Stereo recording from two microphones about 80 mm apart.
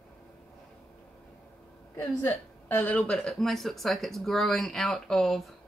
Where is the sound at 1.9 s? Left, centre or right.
Left.